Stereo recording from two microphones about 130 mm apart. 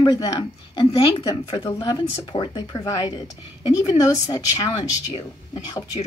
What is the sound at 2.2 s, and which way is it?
Speech, 40° left (ahead or behind).